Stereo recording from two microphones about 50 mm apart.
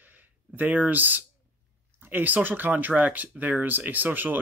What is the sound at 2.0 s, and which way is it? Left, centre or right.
Speech, right.